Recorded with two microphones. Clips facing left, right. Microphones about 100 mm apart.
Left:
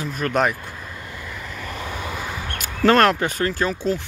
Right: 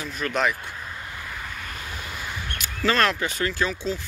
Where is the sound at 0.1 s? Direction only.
50° left (ahead or behind).